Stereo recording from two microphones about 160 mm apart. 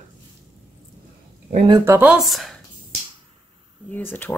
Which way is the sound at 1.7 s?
15° right (ahead or behind).